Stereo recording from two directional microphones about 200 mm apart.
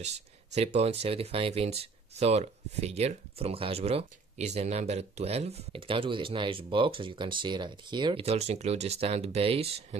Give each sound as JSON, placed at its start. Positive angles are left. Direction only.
{"t": 0.0, "sound": "speech", "side_deg": -35}